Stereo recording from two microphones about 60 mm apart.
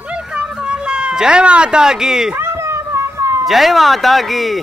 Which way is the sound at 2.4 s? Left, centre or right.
Right.